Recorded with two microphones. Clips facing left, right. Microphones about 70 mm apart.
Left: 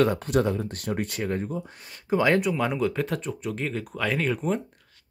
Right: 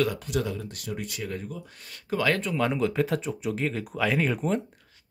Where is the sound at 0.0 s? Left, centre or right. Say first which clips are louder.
Left 5 dB; left.